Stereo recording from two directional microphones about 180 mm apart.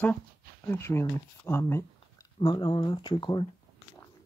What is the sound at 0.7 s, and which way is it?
Speech, 15° left (ahead or behind).